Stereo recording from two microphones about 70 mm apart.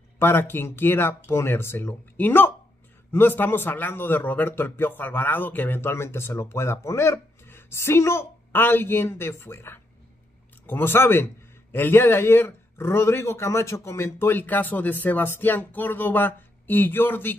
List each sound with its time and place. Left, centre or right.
0.2 s a man's voice: left